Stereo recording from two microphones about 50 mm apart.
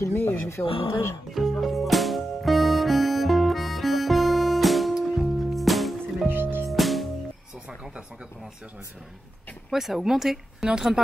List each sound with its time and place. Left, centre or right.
0.1 s speech: left
0.4 s speech: left
1.3 s music: centre
6.2 s music: right
6.7 s music: centre
9.7 s speech: centre